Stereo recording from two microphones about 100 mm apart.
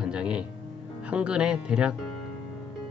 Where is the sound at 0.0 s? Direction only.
10° right (ahead or behind).